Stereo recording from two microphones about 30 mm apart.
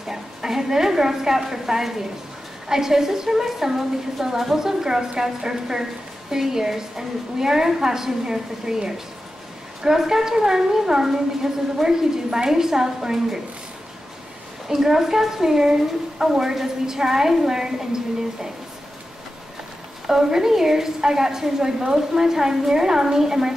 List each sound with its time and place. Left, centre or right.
0.0 s a woman's voice: centre
14.7 s a woman's voice: centre
20.1 s a woman's voice: right